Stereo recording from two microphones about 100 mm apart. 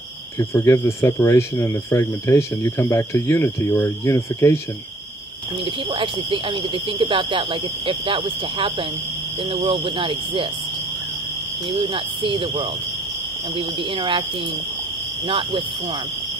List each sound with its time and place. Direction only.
0.4 s speech: 30° left (ahead or behind)
5.9 s speech: 55° right (ahead or behind)
11.7 s speech: 60° right (ahead or behind)
15.2 s speech: 60° right (ahead or behind)